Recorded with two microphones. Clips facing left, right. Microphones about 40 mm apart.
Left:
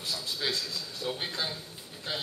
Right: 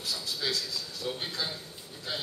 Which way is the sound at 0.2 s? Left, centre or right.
Left.